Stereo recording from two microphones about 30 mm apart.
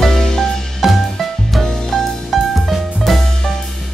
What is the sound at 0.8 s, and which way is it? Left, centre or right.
Music, centre.